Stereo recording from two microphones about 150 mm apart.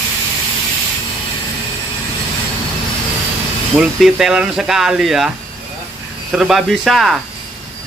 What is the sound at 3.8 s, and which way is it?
Speech, 5° right (ahead or behind).